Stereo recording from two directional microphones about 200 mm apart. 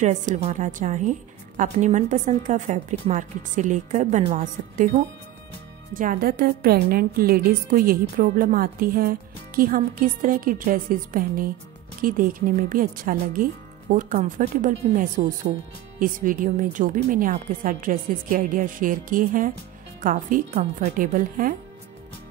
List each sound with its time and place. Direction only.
0.0 s a woman's voice: 40° right (ahead or behind)